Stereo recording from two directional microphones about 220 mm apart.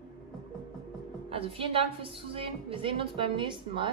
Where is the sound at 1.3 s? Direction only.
25° right (ahead or behind).